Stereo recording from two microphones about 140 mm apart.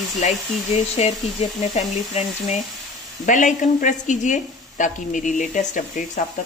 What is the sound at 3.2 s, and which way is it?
Speech, 65° left (ahead or behind).